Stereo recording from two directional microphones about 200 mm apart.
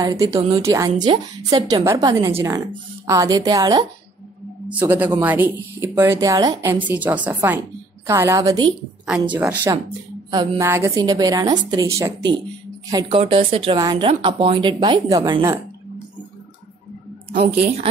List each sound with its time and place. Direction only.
0.0 s a woman's voice: 15° right (ahead or behind)
4.6 s speech: 10° right (ahead or behind)
10.3 s a woman's voice: 20° right (ahead or behind)